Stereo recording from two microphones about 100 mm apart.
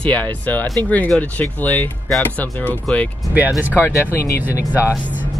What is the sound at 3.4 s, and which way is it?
Speech, 15° right (ahead or behind).